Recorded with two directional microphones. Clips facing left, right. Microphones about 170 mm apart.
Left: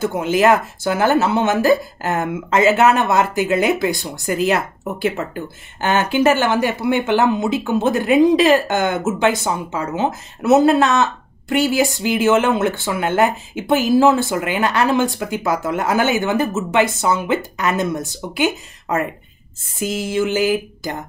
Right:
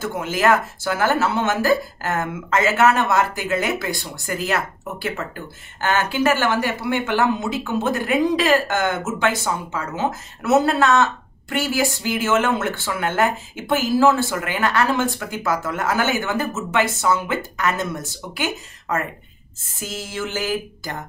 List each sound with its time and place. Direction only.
0.0 s speech: 20° left (ahead or behind)
19.8 s music: 15° left (ahead or behind)